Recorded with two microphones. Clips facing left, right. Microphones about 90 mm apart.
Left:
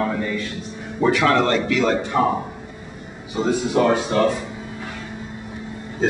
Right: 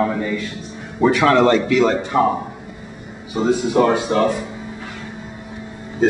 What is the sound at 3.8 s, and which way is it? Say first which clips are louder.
Speech: right 2 dB; 15° right (ahead or behind).